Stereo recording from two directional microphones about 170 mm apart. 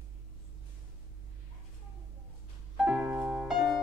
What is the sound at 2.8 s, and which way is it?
Music, 5° right (ahead or behind).